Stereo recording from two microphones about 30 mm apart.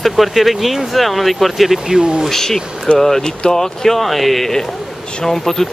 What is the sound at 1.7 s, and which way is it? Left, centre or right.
Speech, centre.